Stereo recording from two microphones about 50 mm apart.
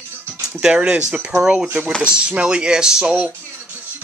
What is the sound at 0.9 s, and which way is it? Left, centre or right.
Speech, right.